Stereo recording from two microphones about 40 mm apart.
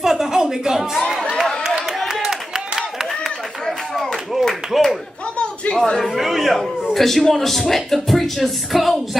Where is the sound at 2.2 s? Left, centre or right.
Centre.